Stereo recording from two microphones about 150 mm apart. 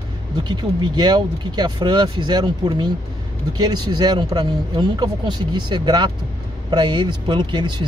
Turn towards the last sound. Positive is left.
turn(degrees=-30)  # may be behind; listen again after turning